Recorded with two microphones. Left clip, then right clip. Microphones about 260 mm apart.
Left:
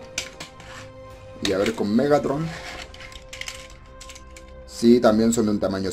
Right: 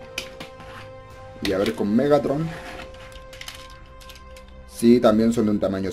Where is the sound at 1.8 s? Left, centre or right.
Centre.